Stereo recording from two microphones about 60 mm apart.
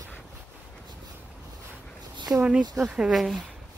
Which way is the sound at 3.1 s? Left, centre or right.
Centre.